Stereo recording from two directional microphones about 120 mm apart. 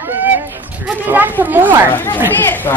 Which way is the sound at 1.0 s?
15° right (ahead or behind).